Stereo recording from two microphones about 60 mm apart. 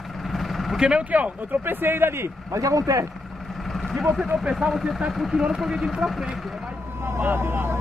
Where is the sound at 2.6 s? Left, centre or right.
Right.